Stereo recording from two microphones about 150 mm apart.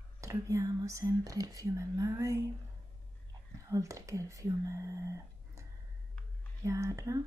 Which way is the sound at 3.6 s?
20° right (ahead or behind).